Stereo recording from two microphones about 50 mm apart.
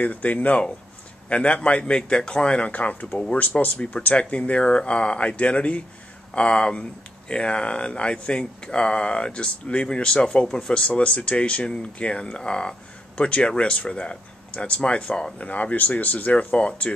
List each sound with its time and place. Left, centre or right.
0.0 s speech: left
15.3 s speech: left